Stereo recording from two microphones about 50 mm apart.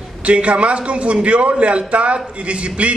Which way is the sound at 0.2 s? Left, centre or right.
Right.